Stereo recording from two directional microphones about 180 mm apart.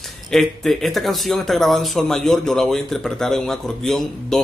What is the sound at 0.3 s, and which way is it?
A man's voice, centre (ahead or behind).